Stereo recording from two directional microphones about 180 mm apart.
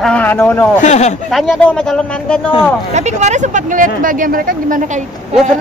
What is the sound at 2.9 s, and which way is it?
Speech, 40° right (ahead or behind).